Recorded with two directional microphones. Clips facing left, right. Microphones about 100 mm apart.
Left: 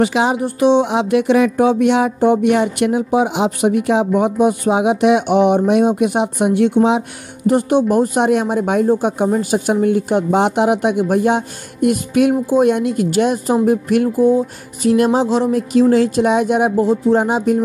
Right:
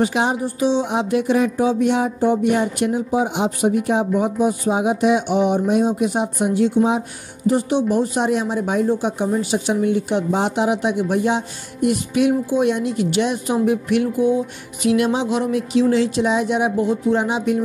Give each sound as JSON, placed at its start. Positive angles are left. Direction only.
{"t": 0.0, "sound": "speech", "side_deg": 90}
{"t": 7.4, "sound": "speech", "side_deg": 55}
{"t": 15.7, "sound": "speech", "side_deg": 45}